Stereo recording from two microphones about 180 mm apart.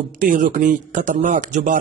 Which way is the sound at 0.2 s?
45° right (ahead or behind).